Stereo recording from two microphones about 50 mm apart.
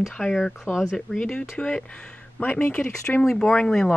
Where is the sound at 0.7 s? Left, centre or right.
Centre.